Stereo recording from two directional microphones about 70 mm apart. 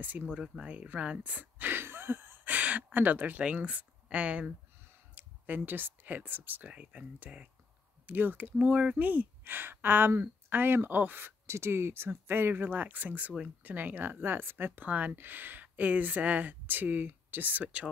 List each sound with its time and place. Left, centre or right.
0.0 s speech: right